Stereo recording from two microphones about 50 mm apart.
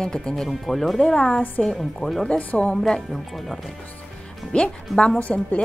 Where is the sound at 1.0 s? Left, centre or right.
Centre.